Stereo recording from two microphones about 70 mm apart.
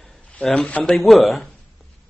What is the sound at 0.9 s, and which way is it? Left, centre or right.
Speech, centre.